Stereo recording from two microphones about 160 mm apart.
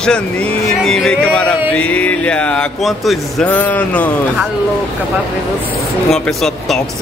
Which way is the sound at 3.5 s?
10° left (ahead or behind).